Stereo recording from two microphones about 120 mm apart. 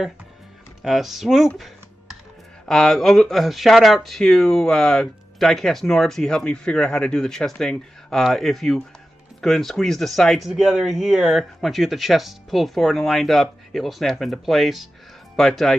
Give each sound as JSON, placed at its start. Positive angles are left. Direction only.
{"t": 0.8, "sound": "speech", "side_deg": 0}
{"t": 2.6, "sound": "speech", "side_deg": 0}